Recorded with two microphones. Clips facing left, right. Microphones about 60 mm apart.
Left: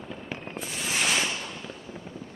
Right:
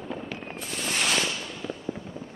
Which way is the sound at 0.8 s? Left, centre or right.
Centre.